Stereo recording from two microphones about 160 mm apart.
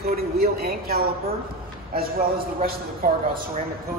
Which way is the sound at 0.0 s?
75° right (ahead or behind).